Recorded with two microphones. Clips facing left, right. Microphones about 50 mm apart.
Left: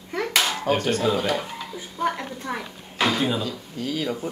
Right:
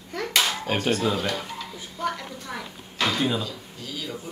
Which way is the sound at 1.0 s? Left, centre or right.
Centre.